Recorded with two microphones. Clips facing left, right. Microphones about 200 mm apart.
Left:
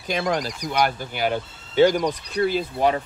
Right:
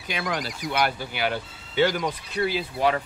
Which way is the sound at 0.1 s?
40° left (ahead or behind).